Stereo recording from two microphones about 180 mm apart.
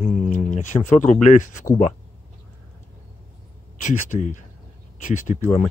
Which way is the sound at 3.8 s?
45° left (ahead or behind).